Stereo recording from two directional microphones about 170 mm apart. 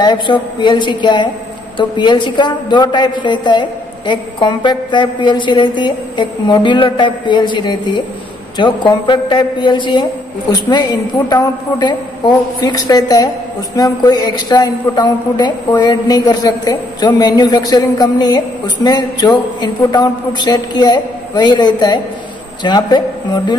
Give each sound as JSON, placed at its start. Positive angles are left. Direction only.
{"t": 0.0, "sound": "a man's voice", "side_deg": 25}